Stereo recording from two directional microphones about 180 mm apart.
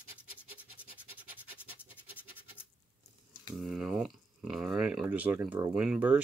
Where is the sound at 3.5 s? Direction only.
5° right (ahead or behind).